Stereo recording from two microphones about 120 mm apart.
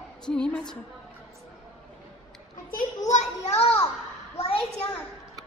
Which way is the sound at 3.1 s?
65° left (ahead or behind).